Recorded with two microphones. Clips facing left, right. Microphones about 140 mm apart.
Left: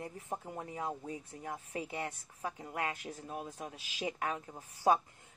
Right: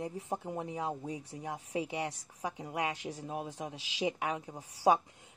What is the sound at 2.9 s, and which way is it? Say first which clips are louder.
Speech: right 4 dB; 90° right.